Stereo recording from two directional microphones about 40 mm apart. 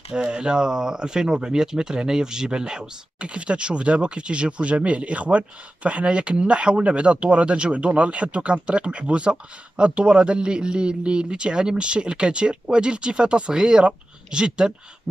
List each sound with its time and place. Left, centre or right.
0.1 s speech: right